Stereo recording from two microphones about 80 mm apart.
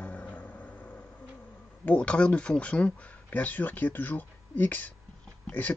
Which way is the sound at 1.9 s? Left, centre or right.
Centre.